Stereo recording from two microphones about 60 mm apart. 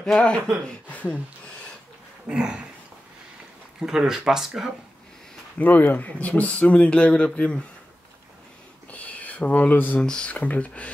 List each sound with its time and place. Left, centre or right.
0.0 s speech: centre
0.8 s speech: left
2.2 s speech: centre
3.8 s speech: centre
5.6 s speech: left
8.9 s a sound: left
9.9 s speech: centre
10.3 s speech: left